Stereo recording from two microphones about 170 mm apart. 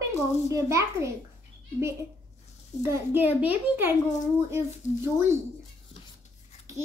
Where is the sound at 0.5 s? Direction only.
20° right (ahead or behind).